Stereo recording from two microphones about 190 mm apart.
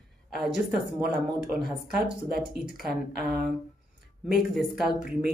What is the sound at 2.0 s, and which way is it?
Speech, 60° right (ahead or behind).